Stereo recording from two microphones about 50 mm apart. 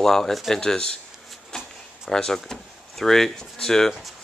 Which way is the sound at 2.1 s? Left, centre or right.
Centre.